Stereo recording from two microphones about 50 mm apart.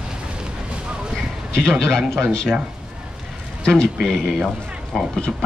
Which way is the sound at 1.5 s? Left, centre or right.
Centre.